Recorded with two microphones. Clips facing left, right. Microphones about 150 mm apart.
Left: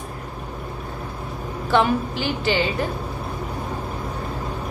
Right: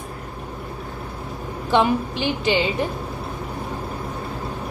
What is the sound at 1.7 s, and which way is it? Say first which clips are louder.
A woman's voice: even; 20° right (ahead or behind).